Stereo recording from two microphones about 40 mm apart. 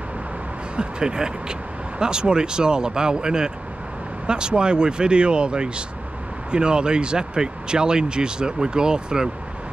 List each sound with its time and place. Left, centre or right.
0.7 s speech: right